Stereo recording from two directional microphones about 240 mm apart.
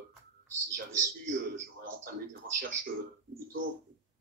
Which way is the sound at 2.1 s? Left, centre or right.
Right.